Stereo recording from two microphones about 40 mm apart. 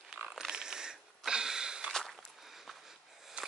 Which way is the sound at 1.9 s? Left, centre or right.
Centre.